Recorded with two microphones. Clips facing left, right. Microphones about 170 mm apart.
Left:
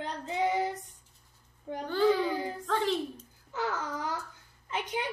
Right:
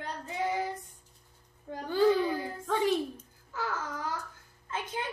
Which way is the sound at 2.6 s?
15° right (ahead or behind).